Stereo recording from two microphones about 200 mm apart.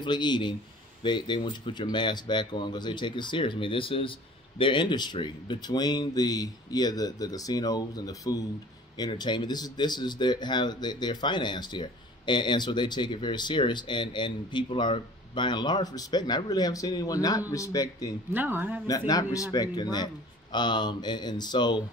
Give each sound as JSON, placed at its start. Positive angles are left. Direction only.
{"t": 0.0, "sound": "speech", "side_deg": 20}
{"t": 18.3, "sound": "speech", "side_deg": -10}
{"t": 18.9, "sound": "speech", "side_deg": 20}